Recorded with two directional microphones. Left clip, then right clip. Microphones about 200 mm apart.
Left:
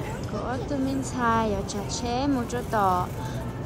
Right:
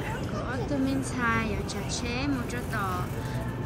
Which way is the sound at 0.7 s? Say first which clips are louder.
Left 1 dB; 5° left (ahead or behind).